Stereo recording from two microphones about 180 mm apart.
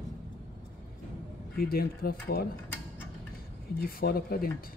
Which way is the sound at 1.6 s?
55° left (ahead or behind).